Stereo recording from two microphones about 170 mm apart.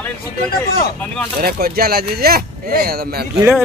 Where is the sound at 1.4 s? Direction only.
60° right (ahead or behind).